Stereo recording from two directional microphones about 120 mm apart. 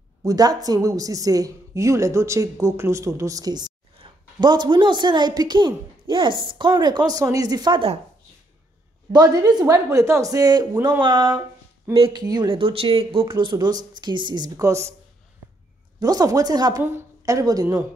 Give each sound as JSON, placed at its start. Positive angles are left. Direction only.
{"t": 0.2, "sound": "a woman's voice", "side_deg": -30}
{"t": 4.0, "sound": "a sound", "side_deg": -45}
{"t": 4.4, "sound": "speech", "side_deg": -35}
{"t": 9.1, "sound": "speech", "side_deg": -35}
{"t": 16.0, "sound": "a woman's voice", "side_deg": -30}